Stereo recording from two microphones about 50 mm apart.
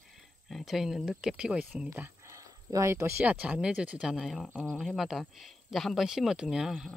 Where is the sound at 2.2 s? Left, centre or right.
Right.